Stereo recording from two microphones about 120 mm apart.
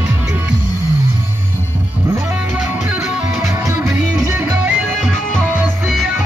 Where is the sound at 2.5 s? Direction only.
10° right (ahead or behind).